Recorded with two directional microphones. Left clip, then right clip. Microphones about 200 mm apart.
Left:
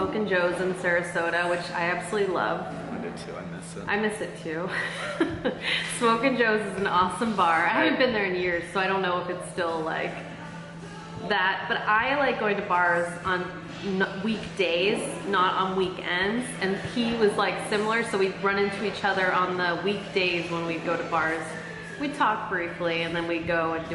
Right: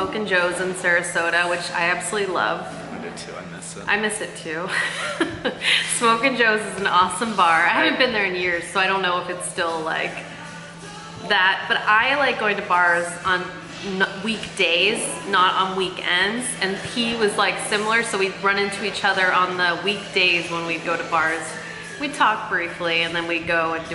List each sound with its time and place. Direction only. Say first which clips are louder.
0.3 s a woman's voice: right 5 dB; 10° left (ahead or behind)
3.9 s a woman's voice: right 5 dB; 5° left (ahead or behind)
11.2 s a woman's voice: right 6 dB; 10° left (ahead or behind)